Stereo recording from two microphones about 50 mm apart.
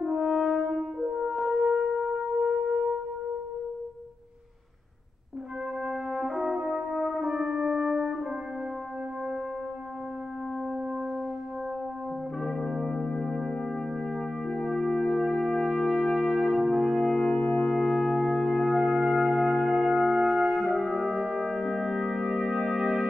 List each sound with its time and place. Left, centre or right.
0.0 s french horn: centre
1.1 s music: centre
5.9 s brass instrument: centre
7.2 s brass instrument: centre
12.4 s brass instrument: centre
14.1 s music: centre
17.3 s music: left
17.6 s music: centre
18.9 s music: centre
20.2 s brass instrument: centre